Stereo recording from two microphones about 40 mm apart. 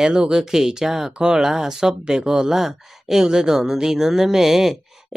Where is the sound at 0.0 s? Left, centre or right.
Centre.